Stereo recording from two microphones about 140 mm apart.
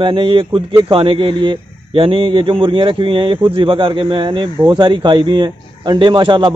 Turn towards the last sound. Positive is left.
turn(degrees=-35)  # may be behind; listen again after turning